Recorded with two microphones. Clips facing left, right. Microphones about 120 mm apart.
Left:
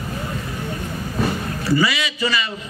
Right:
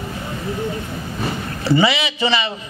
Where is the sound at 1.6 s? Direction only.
25° right (ahead or behind).